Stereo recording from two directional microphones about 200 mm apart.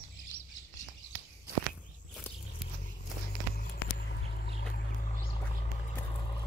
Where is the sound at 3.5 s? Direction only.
50° left (ahead or behind).